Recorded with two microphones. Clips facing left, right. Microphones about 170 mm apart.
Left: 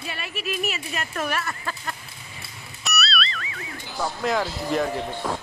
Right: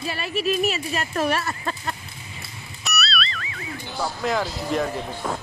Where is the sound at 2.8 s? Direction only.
Centre (ahead or behind).